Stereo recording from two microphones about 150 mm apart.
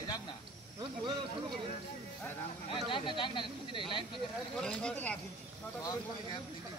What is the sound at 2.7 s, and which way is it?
Speech, 35° left (ahead or behind).